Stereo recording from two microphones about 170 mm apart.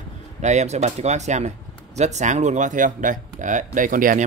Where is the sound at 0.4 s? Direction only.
40° right (ahead or behind).